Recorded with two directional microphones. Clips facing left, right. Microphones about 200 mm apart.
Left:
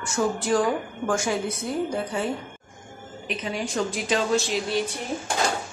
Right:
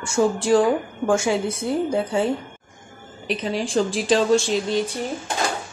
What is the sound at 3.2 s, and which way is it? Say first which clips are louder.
A woman's voice: right 5 dB; 30° right (ahead or behind).